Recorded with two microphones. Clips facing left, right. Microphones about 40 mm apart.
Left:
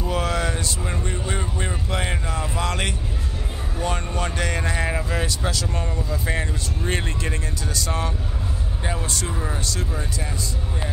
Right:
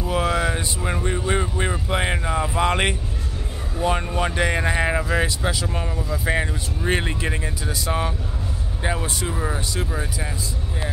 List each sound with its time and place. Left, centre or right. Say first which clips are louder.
0.0 s vehicle: right 2 dB; centre
3.7 s speech: right 4 dB; centre